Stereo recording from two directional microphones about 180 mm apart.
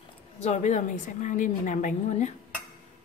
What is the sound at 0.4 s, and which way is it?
A woman's voice, 40° left (ahead or behind).